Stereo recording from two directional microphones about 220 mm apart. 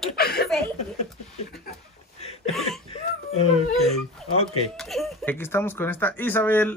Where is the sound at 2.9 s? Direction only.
25° left (ahead or behind).